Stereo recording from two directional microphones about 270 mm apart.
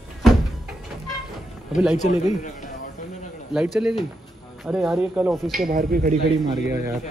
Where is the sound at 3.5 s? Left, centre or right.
Centre.